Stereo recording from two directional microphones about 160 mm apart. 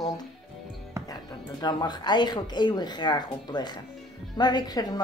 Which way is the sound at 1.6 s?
25° left (ahead or behind).